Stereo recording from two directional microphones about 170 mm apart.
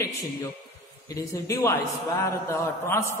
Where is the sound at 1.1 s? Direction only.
15° left (ahead or behind).